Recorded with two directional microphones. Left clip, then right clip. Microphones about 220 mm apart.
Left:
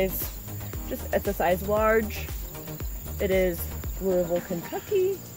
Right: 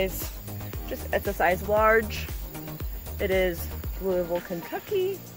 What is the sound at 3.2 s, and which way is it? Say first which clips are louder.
Speech: left 1 dB; 10° right (ahead or behind).